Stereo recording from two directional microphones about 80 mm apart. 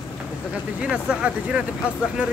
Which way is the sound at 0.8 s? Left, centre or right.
Centre.